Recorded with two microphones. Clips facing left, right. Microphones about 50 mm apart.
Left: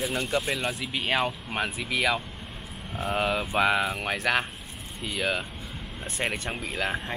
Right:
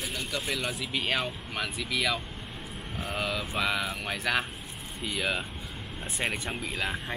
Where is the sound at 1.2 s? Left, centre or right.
Left.